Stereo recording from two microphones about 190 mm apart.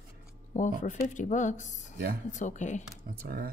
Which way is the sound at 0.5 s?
40° left (ahead or behind).